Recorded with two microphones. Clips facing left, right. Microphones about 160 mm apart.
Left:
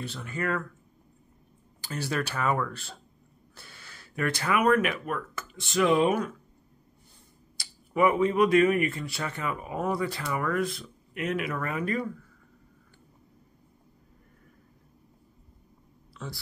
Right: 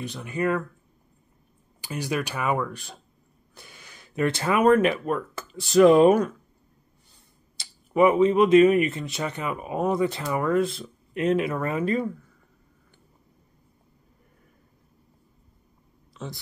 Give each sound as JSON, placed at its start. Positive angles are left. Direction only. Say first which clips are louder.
{"t": 0.0, "sound": "speech", "louder": "right 5 dB", "side_deg": -15}
{"t": 1.8, "sound": "speech", "louder": "right 3 dB", "side_deg": -15}
{"t": 7.5, "sound": "speech", "louder": "right 5 dB", "side_deg": -20}
{"t": 16.1, "sound": "a sound", "louder": "right 3 dB", "side_deg": -20}